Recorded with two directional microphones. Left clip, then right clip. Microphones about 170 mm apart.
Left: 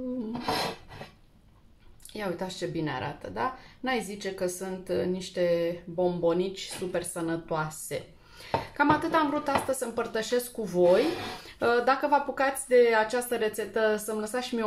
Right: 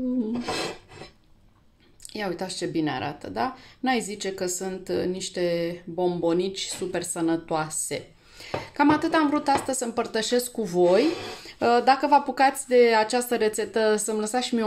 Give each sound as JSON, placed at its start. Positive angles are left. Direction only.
{"t": 2.1, "sound": "speech", "side_deg": -40}